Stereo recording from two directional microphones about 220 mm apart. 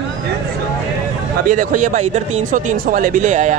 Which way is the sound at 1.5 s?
35° right (ahead or behind).